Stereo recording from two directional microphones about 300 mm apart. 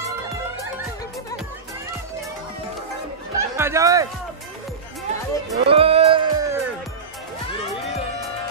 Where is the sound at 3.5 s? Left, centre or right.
Centre.